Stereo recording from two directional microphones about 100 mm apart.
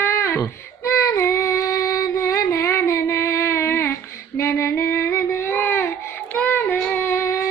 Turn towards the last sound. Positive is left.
turn(degrees=25)  # may be behind; listen again after turning